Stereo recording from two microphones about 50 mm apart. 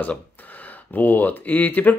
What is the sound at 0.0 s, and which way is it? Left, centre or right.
Speech, left.